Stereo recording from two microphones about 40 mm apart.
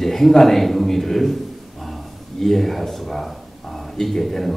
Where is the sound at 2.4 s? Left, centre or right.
Centre.